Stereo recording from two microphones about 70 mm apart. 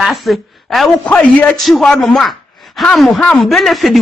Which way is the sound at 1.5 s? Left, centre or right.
Centre.